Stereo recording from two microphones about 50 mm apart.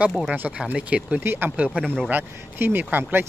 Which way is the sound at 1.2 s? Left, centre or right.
Right.